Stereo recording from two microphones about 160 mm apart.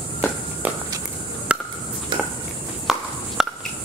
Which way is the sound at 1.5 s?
5° right (ahead or behind).